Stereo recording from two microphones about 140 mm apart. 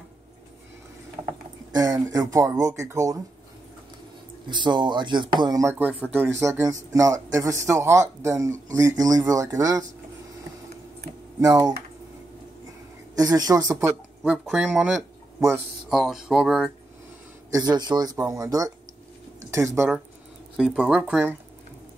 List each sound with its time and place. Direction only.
1.7 s speech: 25° right (ahead or behind)
4.5 s speech: 35° right (ahead or behind)
11.3 s speech: 25° right (ahead or behind)
13.1 s speech: 25° right (ahead or behind); by 14.7 s 5° right (ahead or behind)
15.9 s speech: centre (ahead or behind)
17.5 s speech: 30° right (ahead or behind)
20.5 s speech: 5° right (ahead or behind)